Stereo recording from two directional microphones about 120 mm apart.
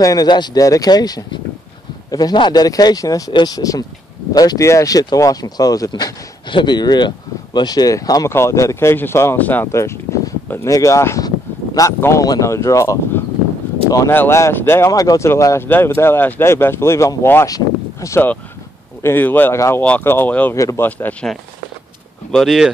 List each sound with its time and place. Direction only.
0.0 s speech: 30° left (ahead or behind)
19.0 s speech: 15° left (ahead or behind)
20.5 s speech: 25° left (ahead or behind); by 22.7 s centre (ahead or behind)